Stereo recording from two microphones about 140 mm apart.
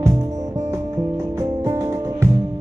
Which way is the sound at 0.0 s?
20° right (ahead or behind).